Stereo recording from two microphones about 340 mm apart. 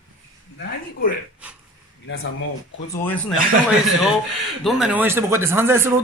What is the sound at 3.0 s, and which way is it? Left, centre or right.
Speech, centre.